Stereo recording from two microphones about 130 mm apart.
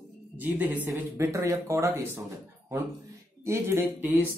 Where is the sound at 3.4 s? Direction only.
20° right (ahead or behind).